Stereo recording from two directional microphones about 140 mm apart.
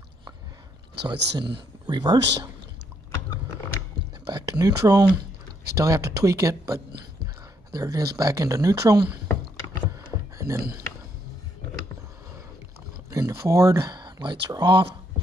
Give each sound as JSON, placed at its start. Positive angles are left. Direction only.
{"t": 1.0, "sound": "speech", "side_deg": -30}
{"t": 4.3, "sound": "speech", "side_deg": -30}
{"t": 9.8, "sound": "a sound", "side_deg": -20}
{"t": 13.1, "sound": "speech", "side_deg": -25}